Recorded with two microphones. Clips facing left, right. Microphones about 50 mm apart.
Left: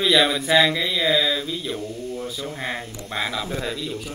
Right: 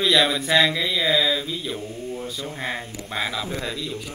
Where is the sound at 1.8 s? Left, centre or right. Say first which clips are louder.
Left 1 dB; centre.